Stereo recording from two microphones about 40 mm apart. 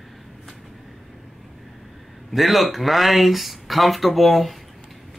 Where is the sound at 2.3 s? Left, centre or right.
Centre.